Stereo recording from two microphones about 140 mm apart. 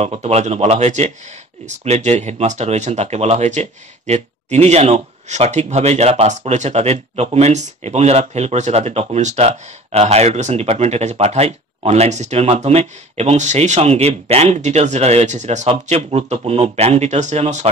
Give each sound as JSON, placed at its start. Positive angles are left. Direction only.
{"t": 0.0, "sound": "speech", "side_deg": -50}